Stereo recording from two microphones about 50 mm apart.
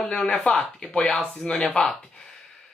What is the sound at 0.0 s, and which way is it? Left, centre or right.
A man's voice, centre.